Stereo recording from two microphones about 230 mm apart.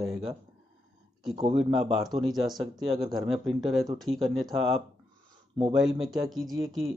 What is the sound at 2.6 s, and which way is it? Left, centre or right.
Speech, right.